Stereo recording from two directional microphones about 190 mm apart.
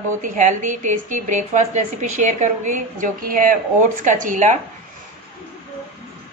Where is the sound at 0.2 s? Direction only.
40° right (ahead or behind).